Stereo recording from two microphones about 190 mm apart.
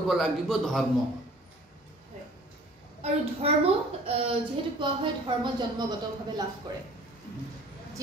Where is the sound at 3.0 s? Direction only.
30° right (ahead or behind).